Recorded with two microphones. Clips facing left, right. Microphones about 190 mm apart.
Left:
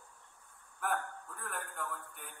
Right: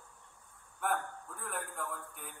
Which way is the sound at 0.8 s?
Centre (ahead or behind).